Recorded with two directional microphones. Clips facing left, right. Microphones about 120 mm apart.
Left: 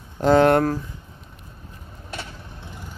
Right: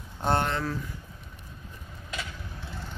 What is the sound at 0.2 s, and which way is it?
Speech, 90° left.